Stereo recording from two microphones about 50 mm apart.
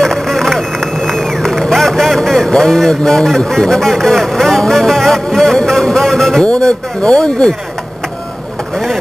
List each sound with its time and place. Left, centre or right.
0.0 s a sound: centre
6.4 s speech: centre
8.7 s vehicle: centre